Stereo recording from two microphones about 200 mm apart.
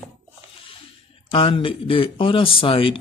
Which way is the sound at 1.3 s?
25° left (ahead or behind).